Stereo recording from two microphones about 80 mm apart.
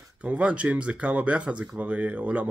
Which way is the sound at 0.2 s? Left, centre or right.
Centre.